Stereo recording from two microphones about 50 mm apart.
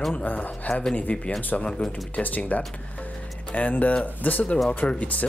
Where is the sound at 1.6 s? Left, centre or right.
Centre.